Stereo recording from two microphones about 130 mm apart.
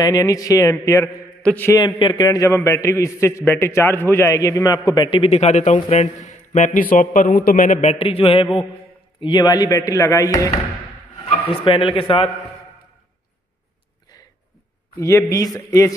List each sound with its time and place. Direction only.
0.0 s a man's voice: 30° left (ahead or behind)
1.4 s a man's voice: 10° left (ahead or behind)
1.7 s a man's voice: 35° left (ahead or behind)
2.2 s a man's voice: 25° left (ahead or behind); by 8.5 s 45° left (ahead or behind)
9.2 s a man's voice: 35° left (ahead or behind)
11.2 s speech: 45° left (ahead or behind)
15.0 s a man's voice: 25° left (ahead or behind)